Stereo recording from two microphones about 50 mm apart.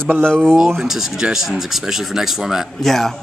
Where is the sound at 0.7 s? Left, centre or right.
Centre.